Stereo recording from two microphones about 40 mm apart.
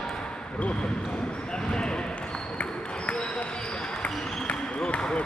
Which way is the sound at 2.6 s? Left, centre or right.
Left.